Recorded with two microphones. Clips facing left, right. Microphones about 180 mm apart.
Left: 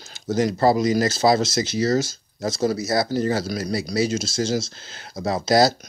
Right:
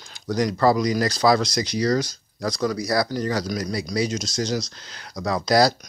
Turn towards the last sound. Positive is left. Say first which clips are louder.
# left 1 dB
turn(degrees=25)  # may be behind; listen again after turning